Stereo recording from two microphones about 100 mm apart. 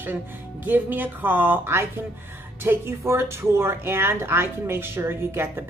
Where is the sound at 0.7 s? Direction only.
20° right (ahead or behind).